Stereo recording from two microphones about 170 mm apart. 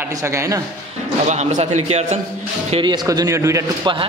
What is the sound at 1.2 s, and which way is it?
Speech, 45° right (ahead or behind).